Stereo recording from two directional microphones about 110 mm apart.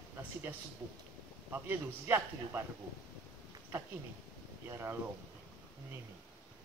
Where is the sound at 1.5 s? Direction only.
20° right (ahead or behind).